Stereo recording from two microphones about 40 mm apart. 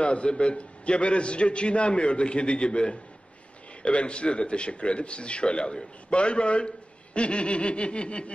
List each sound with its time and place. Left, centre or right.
0.0 s a man's voice: left